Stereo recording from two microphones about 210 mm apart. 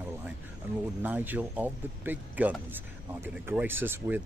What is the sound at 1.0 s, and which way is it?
Speech, 10° right (ahead or behind).